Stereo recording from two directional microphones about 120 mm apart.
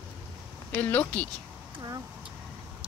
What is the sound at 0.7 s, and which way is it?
Speech, 15° left (ahead or behind).